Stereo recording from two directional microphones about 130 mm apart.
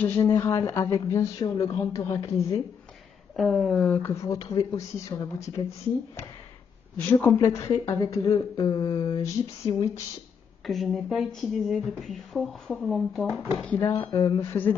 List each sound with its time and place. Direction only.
0.0 s speech: 20° left (ahead or behind)
3.3 s speech: centre (ahead or behind); by 5.0 s 25° left (ahead or behind)
7.0 s speech: 15° left (ahead or behind)
8.3 s a sound: 35° left (ahead or behind)
10.7 s speech: centre (ahead or behind)
13.6 s speech: 10° left (ahead or behind)
13.9 s a sound: 35° left (ahead or behind)